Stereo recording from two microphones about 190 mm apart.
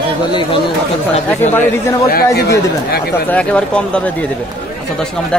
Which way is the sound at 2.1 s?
55° left (ahead or behind).